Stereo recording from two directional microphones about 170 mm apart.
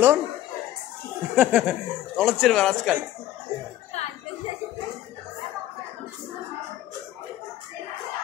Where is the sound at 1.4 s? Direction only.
5° right (ahead or behind).